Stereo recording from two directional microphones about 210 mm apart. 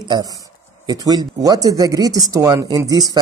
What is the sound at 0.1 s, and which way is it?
Speech, 15° right (ahead or behind).